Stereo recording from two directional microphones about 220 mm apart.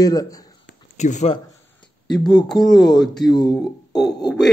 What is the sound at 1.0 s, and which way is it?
Speech, 30° left (ahead or behind).